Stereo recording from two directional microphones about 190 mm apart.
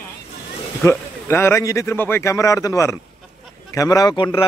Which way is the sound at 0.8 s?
15° left (ahead or behind).